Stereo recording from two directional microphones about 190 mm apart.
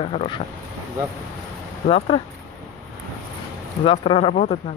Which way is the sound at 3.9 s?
30° left (ahead or behind).